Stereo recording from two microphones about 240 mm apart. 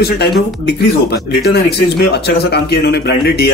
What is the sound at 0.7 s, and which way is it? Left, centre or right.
Speech, left.